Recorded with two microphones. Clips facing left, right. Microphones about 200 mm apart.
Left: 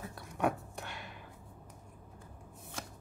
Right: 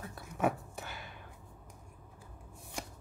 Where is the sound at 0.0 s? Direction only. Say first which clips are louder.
Right 1 dB; centre (ahead or behind).